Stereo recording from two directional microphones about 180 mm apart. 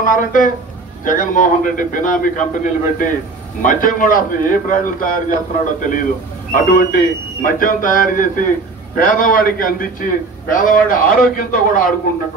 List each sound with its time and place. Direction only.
0.0 s a man's voice: 50° left (ahead or behind)